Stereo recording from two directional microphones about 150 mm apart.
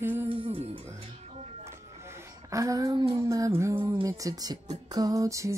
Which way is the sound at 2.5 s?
20° right (ahead or behind).